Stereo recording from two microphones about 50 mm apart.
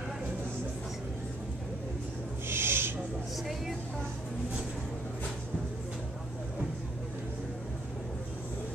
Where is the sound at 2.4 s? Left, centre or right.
Right.